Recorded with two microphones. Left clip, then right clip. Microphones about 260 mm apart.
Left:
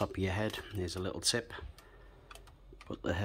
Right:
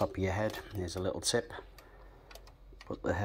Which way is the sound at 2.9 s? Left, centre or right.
Left.